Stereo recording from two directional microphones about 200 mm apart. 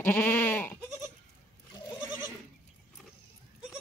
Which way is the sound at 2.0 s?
15° right (ahead or behind).